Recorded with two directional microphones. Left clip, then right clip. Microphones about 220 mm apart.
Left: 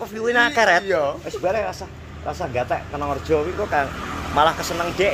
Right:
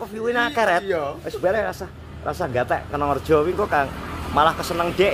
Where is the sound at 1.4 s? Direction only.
20° right (ahead or behind).